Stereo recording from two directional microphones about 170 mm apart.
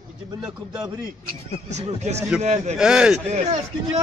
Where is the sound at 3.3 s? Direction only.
45° right (ahead or behind).